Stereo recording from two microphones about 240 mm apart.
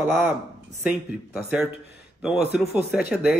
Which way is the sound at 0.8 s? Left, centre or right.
Centre.